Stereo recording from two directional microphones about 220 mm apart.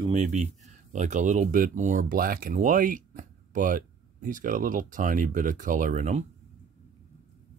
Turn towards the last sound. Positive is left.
turn(degrees=-35)  # may be behind; listen again after turning